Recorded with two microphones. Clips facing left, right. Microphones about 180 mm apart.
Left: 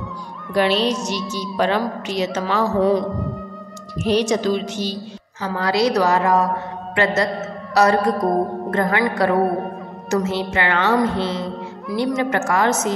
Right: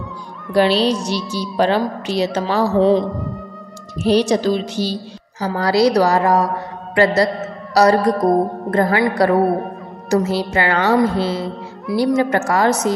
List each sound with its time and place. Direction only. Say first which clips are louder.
0.5 s speech: right 3 dB; 35° right (ahead or behind)
4.0 s speech: right 3 dB; 35° right (ahead or behind)
7.7 s speech: right 3 dB; 35° right (ahead or behind)